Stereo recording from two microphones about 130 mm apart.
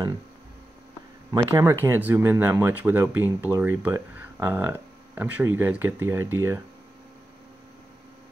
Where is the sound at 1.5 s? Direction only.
20° right (ahead or behind).